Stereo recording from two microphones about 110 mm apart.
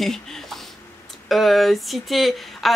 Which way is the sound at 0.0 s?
5° left (ahead or behind).